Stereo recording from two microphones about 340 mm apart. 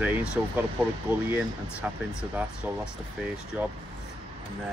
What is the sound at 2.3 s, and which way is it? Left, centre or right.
Speech, centre.